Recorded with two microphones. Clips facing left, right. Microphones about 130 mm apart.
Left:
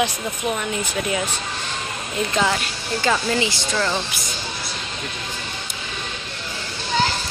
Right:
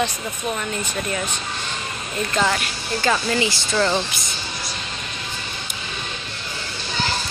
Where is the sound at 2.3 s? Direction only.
10° left (ahead or behind).